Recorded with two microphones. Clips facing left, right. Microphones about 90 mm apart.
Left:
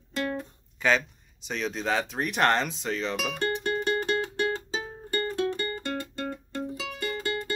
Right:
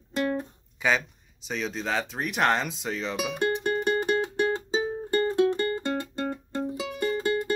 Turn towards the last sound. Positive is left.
turn(degrees=-20)  # may be behind; listen again after turning